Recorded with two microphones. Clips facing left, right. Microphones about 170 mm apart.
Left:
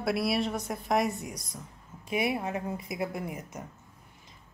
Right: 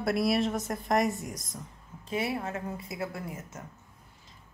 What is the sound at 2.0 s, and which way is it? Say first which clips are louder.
Speech: left 2 dB; 15° left (ahead or behind).